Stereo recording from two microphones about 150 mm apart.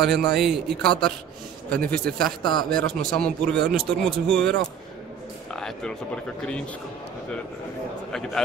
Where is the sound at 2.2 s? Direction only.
30° left (ahead or behind).